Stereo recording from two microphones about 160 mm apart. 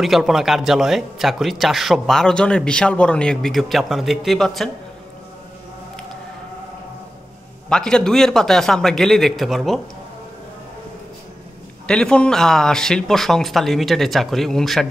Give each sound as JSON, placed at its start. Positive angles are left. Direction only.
{"t": 0.0, "sound": "speech", "side_deg": 0}
{"t": 7.7, "sound": "speech", "side_deg": 5}
{"t": 11.9, "sound": "speech", "side_deg": 5}